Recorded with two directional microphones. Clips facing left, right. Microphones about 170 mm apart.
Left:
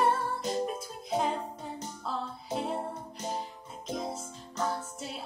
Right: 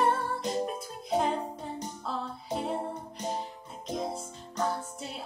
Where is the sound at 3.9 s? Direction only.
Centre (ahead or behind).